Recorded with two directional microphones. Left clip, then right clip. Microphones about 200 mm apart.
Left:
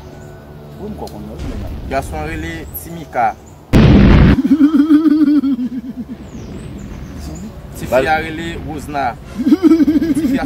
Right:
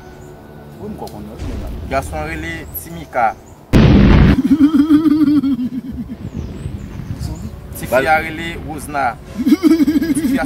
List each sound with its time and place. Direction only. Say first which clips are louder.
1.9 s speech: even; 5° right (ahead or behind)
4.5 s a sound: left 1 dB; 45° right (ahead or behind)
8.0 s speech: right 1 dB; 5° right (ahead or behind)
9.5 s speech: left 2 dB; 45° right (ahead or behind)